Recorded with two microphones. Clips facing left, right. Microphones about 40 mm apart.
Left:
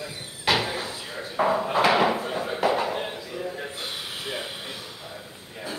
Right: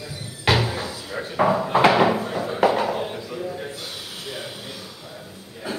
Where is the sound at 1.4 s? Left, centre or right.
Right.